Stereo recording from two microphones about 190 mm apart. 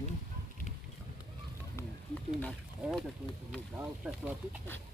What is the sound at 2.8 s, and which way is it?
Speech, 5° right (ahead or behind).